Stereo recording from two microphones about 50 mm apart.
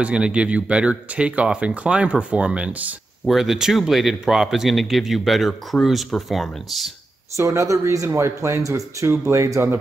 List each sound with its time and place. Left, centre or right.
0.0 s speech: right
3.3 s speech: centre
7.3 s speech: right